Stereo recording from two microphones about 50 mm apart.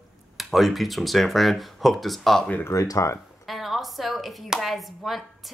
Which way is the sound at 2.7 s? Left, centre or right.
Left.